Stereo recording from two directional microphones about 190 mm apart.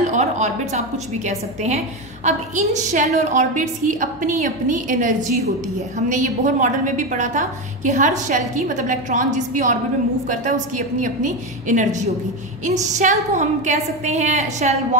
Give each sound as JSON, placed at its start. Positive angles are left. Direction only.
{"t": 0.1, "sound": "a woman's voice", "side_deg": -40}